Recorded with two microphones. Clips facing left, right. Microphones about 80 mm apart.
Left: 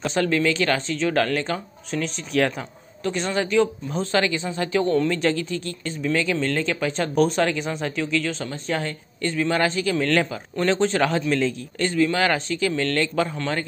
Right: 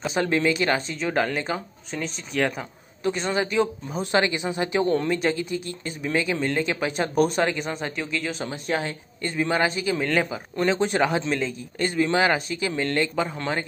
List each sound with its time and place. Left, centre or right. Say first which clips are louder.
0.2 s a woman's voice: left 1 dB; right
1.9 s a woman's voice: left 5 dB; centre
13.4 s speech: left 1 dB; centre